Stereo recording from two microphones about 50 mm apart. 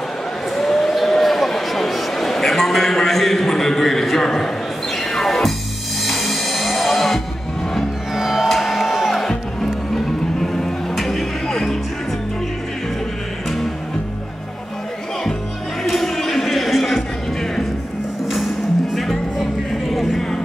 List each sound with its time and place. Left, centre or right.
0.6 s a sound: centre
4.9 s music: centre
15.8 s music: centre